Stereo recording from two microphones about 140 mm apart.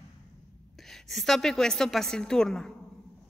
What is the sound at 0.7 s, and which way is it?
A woman's voice, centre (ahead or behind).